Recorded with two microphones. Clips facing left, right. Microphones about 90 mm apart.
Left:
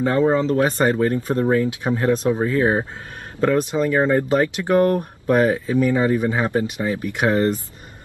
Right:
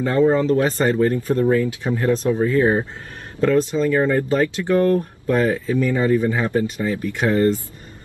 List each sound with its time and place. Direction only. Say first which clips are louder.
0.0 s speech: right 1 dB; 30° left (ahead or behind)